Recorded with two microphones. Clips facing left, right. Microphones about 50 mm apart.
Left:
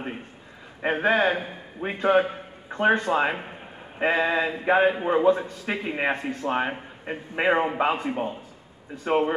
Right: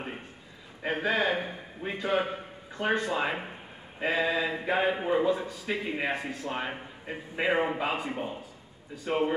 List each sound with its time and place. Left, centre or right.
0.8 s speech: left